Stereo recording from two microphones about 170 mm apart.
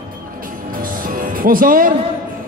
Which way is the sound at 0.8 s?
55° right (ahead or behind).